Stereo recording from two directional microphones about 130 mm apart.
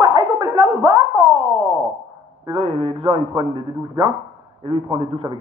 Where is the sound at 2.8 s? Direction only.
45° right (ahead or behind).